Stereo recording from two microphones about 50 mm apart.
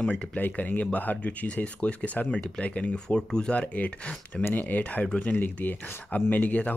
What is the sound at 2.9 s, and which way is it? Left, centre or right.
Speech, centre.